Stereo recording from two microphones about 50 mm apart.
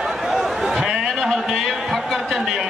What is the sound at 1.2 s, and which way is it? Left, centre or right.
A man's voice, centre.